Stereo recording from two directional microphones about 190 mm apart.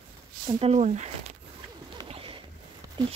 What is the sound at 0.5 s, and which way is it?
Speech, 30° right (ahead or behind).